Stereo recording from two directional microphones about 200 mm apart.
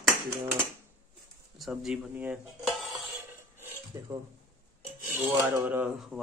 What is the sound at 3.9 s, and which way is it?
Speech, 15° right (ahead or behind).